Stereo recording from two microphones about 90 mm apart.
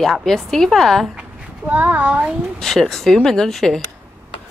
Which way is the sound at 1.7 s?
15° right (ahead or behind).